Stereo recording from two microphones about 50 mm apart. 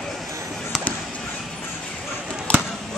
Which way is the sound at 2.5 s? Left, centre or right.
Left.